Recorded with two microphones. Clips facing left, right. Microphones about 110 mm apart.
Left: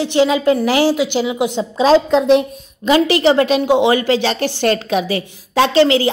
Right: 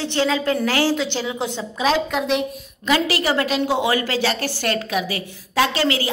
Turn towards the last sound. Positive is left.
turn(degrees=25)  # may be behind; listen again after turning